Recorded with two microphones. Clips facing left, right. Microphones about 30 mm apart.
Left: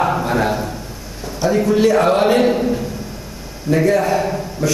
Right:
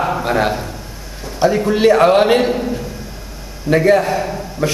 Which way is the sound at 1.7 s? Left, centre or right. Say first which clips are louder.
Right 3 dB; right.